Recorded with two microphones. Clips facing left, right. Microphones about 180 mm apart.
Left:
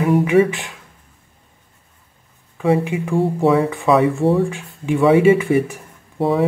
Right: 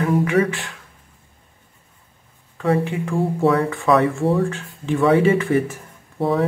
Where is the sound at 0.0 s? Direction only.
20° left (ahead or behind).